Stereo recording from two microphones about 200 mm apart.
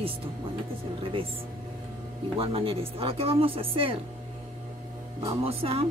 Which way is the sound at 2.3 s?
30° right (ahead or behind).